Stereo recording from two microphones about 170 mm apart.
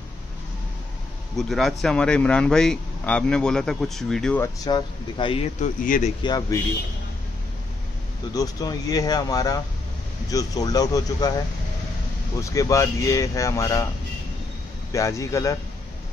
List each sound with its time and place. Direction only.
1.3 s speech: centre (ahead or behind)
4.4 s speech: 25° left (ahead or behind)
5.6 s speech: 50° left (ahead or behind)
6.2 s speech: 25° left (ahead or behind)
8.4 s speech: 20° left (ahead or behind)
12.4 s speech: 20° left (ahead or behind)
14.9 s speech: 20° left (ahead or behind)